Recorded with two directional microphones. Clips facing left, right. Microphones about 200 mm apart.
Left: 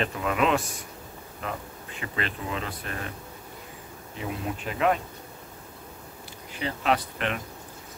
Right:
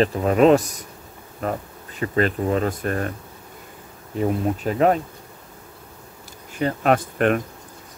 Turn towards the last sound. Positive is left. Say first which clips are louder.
# right 8 dB
turn(degrees=-50)  # may be behind; listen again after turning